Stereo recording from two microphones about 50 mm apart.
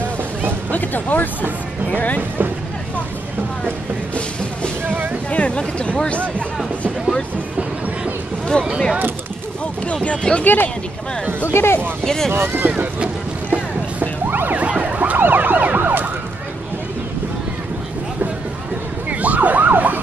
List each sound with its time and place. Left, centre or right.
0.7 s speech: left
4.8 s boat: right
5.3 s speech: left
8.5 s speech: centre
10.0 s speech: left
10.4 s speech: left
11.5 s speech: left
12.0 s speech: centre
12.3 s speech: right
13.0 s music: right
14.2 s emergency vehicle: right
14.5 s emergency vehicle: right
15.1 s emergency vehicle: right
19.0 s emergency vehicle: right